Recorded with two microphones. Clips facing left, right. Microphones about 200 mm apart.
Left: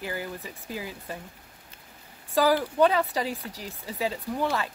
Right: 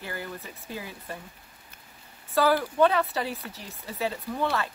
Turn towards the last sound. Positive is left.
turn(degrees=15)  # may be behind; listen again after turning